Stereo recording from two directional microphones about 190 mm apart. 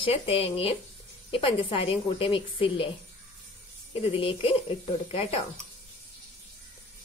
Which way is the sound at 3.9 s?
30° left (ahead or behind).